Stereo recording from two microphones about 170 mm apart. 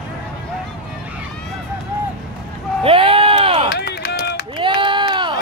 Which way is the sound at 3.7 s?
75° left (ahead or behind).